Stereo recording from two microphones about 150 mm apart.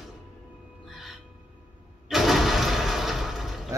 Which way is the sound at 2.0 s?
Centre (ahead or behind).